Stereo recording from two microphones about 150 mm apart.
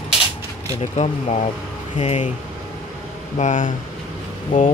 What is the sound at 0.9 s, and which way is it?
Speech, 45° left (ahead or behind).